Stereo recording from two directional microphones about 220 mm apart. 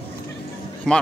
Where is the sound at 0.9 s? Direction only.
Centre (ahead or behind).